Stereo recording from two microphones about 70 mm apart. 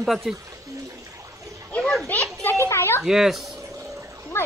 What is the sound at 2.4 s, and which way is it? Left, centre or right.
Children playing, left.